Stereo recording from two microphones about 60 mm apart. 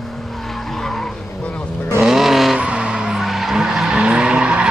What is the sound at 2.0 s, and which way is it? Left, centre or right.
Vehicle, centre.